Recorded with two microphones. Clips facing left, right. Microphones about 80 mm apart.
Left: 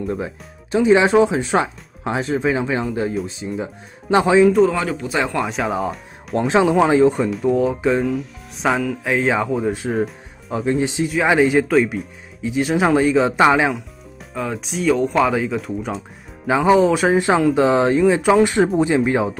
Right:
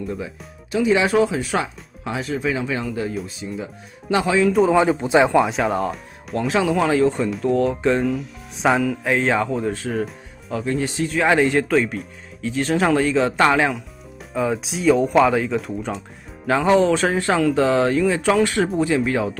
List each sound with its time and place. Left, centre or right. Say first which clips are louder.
0.1 s speech: left 4 dB; left
4.5 s speech: left 2 dB; centre
4.7 s speech: right 6 dB; right
5.4 s speech: right 1 dB; centre
6.3 s speech: left 4 dB; left
6.8 s speech: left 4 dB; centre
7.2 s speech: left 1 dB; centre
11.1 s speech: left 1 dB; centre
14.3 s speech: right 3 dB; centre; by 19.3 s left